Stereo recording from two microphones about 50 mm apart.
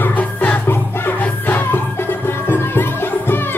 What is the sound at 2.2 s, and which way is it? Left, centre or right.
Music, left.